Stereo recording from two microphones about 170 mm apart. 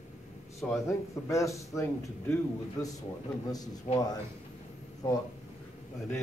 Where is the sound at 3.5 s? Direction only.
20° left (ahead or behind).